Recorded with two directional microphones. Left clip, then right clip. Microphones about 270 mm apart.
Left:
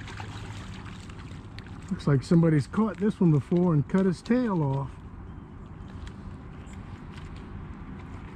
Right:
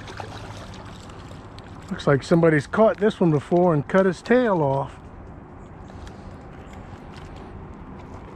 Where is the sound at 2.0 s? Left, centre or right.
Centre.